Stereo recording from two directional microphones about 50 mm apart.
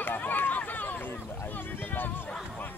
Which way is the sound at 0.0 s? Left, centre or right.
Left.